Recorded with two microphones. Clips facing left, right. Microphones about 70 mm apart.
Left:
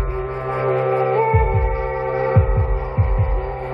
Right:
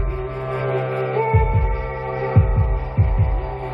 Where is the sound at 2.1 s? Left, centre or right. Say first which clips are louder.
Left 3 dB; left.